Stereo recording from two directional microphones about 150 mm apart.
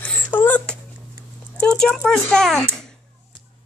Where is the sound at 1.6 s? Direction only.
5° left (ahead or behind).